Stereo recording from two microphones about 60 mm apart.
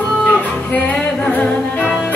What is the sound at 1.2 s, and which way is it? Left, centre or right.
Music, centre.